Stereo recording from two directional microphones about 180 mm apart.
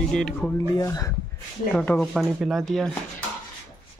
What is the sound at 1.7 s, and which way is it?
A man's voice, 5° left (ahead or behind).